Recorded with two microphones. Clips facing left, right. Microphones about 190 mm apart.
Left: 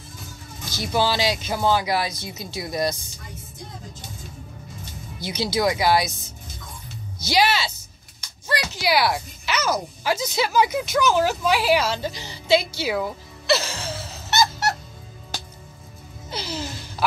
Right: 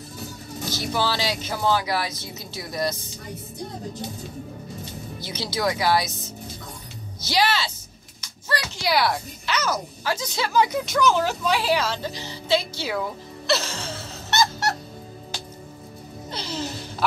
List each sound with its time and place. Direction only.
0.7 s speech: 15° left (ahead or behind)
5.2 s speech: 15° left (ahead or behind)
7.2 s speech: 10° left (ahead or behind)
8.7 s speech: 5° left (ahead or behind)
13.5 s music: 5° left (ahead or behind)
16.3 s music: 5° left (ahead or behind)